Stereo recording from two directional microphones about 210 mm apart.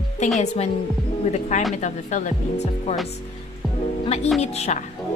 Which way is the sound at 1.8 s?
35° left (ahead or behind).